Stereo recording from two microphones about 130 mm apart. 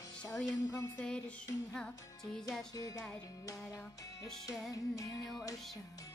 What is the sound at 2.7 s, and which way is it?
Music, 25° left (ahead or behind).